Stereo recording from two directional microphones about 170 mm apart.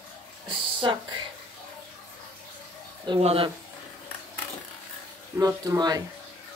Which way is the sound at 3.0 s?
30° right (ahead or behind).